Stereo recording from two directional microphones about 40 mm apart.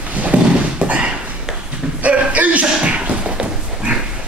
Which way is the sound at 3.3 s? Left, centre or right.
Right.